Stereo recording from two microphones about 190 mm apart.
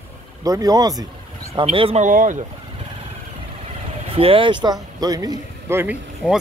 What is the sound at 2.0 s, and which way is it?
Speech, 45° right (ahead or behind).